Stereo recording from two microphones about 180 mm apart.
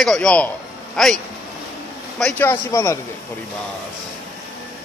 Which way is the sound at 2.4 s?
15° left (ahead or behind).